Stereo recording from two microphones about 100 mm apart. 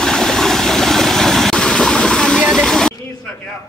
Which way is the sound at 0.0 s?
5° left (ahead or behind).